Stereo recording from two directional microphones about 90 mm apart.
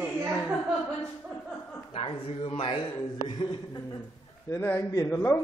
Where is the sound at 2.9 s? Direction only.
50° left (ahead or behind).